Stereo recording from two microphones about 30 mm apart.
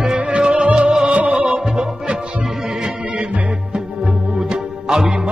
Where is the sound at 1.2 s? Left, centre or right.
Right.